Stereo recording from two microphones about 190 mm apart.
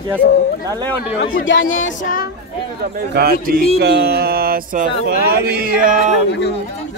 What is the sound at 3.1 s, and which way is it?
Speech, 50° right (ahead or behind).